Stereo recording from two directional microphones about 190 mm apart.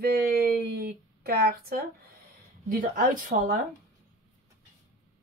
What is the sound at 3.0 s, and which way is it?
Speech, 45° right (ahead or behind).